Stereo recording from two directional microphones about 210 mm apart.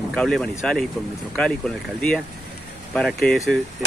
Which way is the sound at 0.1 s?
Centre (ahead or behind).